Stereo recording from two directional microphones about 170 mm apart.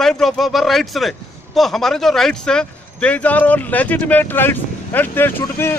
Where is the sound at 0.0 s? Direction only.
Centre (ahead or behind).